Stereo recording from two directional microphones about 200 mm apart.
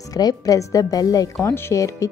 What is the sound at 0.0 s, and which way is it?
Speech, 20° left (ahead or behind).